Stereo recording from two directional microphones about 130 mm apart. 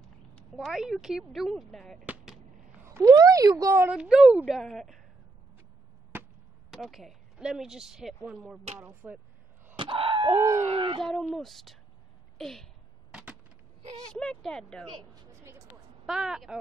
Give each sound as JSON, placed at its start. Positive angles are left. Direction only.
{"t": 0.0, "sound": "speech", "side_deg": 5}
{"t": 2.0, "sound": "fireworks", "side_deg": 0}
{"t": 2.8, "sound": "speech", "side_deg": -25}
{"t": 3.9, "sound": "a woman's voice", "side_deg": -5}
{"t": 6.1, "sound": "chop", "side_deg": -15}
{"t": 6.7, "sound": "speech", "side_deg": 0}
{"t": 9.8, "sound": "groan", "side_deg": -40}
{"t": 10.3, "sound": "speech", "side_deg": -20}
{"t": 10.7, "sound": "dog", "side_deg": -40}
{"t": 11.0, "sound": "a woman's voice", "side_deg": 5}
{"t": 12.4, "sound": "a sound", "side_deg": 5}
{"t": 13.1, "sound": "a sound", "side_deg": -10}
{"t": 14.1, "sound": "a woman's voice", "side_deg": 5}
{"t": 16.1, "sound": "a woman's voice", "side_deg": -5}